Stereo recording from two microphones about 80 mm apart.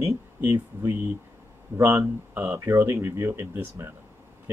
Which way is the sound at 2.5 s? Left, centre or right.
Right.